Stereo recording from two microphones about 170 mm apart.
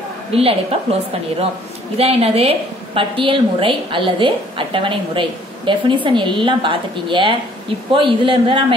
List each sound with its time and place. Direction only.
0.3 s a woman's voice: 35° right (ahead or behind)
2.0 s a woman's voice: 35° right (ahead or behind)